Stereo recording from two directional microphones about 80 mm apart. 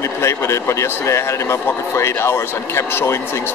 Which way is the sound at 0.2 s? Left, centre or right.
Left.